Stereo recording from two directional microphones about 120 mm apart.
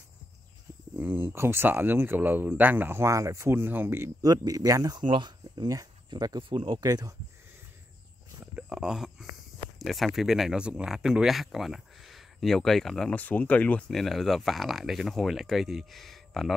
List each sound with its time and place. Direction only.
0.9 s speech: 15° right (ahead or behind); by 5.0 s 30° right (ahead or behind)
5.0 s speech: 40° right (ahead or behind)
8.4 s a sound: 10° right (ahead or behind)
9.8 s speech: centre (ahead or behind)
13.2 s speech: 15° left (ahead or behind)